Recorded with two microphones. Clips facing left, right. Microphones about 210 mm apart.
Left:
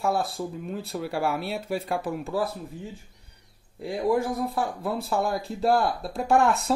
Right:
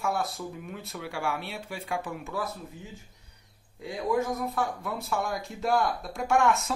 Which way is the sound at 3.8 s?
30° left (ahead or behind).